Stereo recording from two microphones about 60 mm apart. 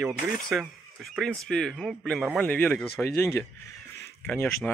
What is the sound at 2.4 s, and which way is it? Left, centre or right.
Speech, left.